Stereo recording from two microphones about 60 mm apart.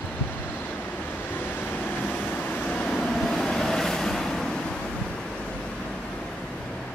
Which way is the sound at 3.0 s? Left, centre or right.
Centre.